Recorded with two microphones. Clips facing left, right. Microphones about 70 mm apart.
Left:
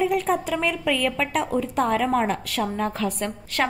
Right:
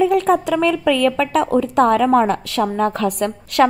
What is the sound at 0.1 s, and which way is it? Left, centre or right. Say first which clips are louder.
A woman's voice: right 7 dB; right.